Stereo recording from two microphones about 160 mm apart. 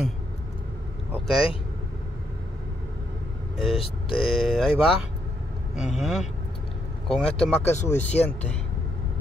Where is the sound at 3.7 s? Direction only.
35° left (ahead or behind).